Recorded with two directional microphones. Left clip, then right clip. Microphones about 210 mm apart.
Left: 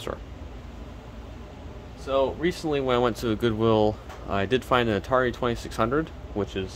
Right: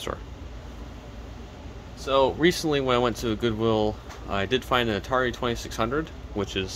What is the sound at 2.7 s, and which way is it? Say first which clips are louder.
Speech: right 1 dB; 5° right (ahead or behind).